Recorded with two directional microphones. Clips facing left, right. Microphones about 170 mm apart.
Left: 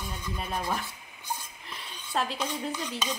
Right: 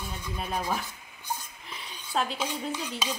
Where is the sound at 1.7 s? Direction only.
Centre (ahead or behind).